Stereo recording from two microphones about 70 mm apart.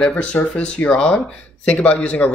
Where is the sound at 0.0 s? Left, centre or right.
Centre.